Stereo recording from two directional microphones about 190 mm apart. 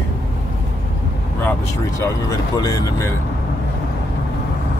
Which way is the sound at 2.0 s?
20° left (ahead or behind).